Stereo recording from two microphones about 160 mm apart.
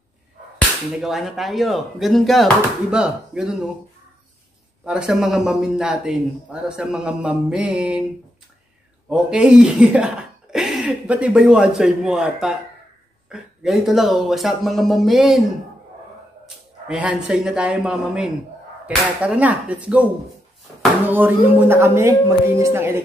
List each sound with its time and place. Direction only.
1.0 s speech: centre (ahead or behind)
4.8 s speech: 5° right (ahead or behind)
9.1 s speech: 5° right (ahead or behind)
16.4 s speech: 5° right (ahead or behind)
21.1 s speech: 10° right (ahead or behind)